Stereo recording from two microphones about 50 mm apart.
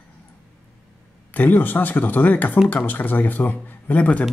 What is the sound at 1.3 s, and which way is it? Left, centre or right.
Speech, left.